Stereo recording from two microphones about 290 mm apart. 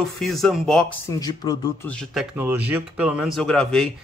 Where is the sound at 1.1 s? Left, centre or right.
Centre.